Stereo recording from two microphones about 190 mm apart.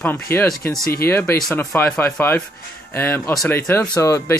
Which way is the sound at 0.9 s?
10° left (ahead or behind).